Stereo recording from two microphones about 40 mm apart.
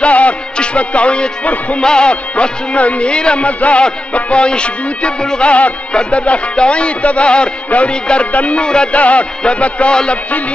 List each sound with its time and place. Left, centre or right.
0.0 s music: left
8.3 s a man's voice: left
8.6 s music: left
8.9 s a man's voice: left
9.4 s music: left